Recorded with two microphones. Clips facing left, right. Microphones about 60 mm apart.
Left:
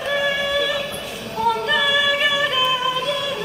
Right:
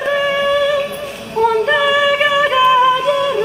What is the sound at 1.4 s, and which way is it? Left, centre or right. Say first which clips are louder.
Singing: right 6 dB; right.